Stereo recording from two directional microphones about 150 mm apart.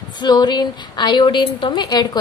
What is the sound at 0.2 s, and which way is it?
A woman's voice, 30° left (ahead or behind).